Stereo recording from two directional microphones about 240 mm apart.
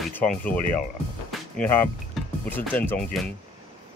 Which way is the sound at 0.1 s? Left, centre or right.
Centre.